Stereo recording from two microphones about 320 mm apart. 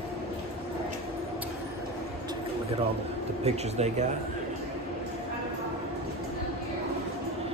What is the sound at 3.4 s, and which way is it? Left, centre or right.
Speech, centre.